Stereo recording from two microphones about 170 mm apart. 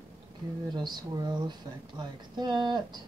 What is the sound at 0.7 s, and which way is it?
A woman's voice, 25° right (ahead or behind).